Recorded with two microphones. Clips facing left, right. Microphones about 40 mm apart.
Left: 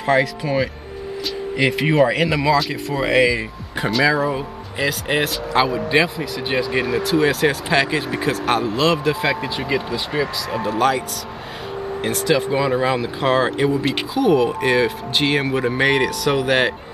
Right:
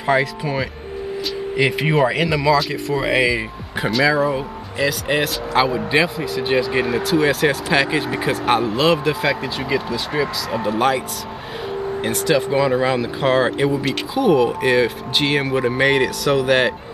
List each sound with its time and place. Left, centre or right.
0.0 s speech: centre
10.6 s speech: centre
12.0 s speech: centre